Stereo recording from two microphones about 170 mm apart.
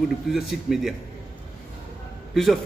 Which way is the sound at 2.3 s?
Centre (ahead or behind).